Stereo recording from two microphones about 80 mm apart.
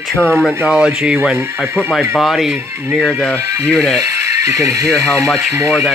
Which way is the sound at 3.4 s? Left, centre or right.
Right.